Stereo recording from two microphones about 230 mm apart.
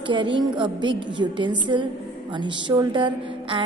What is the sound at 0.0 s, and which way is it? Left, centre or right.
A woman's voice, right.